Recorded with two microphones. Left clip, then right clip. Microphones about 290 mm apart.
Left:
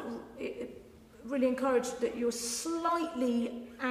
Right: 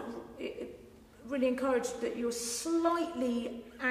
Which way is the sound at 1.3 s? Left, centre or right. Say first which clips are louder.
Left 1 dB; left.